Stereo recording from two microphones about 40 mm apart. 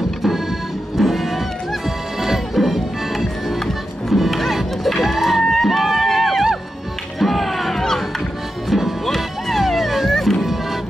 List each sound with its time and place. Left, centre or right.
0.9 s music: centre
3.5 s music: centre